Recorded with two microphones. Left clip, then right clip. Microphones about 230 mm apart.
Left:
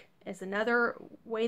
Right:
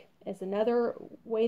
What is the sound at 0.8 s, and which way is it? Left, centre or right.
Speech, centre.